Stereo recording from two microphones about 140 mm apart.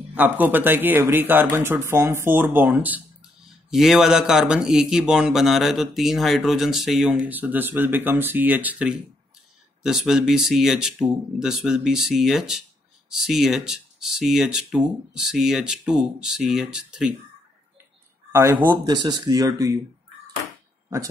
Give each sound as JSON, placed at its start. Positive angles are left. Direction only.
{"t": 0.1, "sound": "speech", "side_deg": -10}
{"t": 18.3, "sound": "speech", "side_deg": -20}